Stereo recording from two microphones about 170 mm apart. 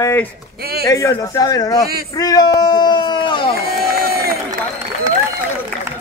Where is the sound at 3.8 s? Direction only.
65° right (ahead or behind).